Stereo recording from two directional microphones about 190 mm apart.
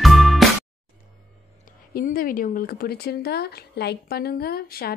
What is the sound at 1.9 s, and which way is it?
A woman's voice, 50° left (ahead or behind).